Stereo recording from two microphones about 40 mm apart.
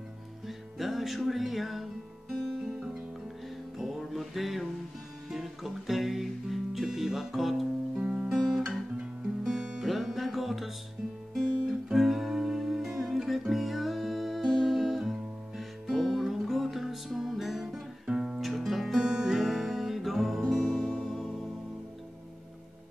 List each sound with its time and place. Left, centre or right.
0.5 s music: centre
5.3 s guitar: centre
7.9 s guitar: right
9.4 s music: centre
18.0 s music: centre
18.4 s music: centre
19.0 s music: centre
19.4 s music: centre
20.6 s music: centre